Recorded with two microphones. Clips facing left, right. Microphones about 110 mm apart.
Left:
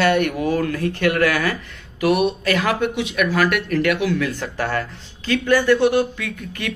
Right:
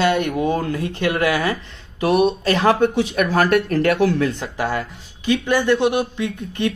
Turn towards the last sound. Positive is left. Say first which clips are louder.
# right 6 dB
turn(degrees=-25)  # may be behind; listen again after turning